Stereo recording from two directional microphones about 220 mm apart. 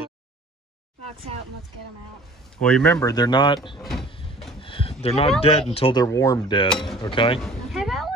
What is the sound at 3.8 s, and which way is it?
Speech, centre (ahead or behind).